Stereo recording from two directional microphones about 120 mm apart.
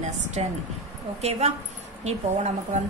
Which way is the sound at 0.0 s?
70° right (ahead or behind).